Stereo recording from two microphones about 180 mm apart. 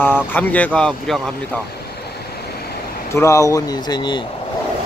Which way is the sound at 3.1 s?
15° left (ahead or behind).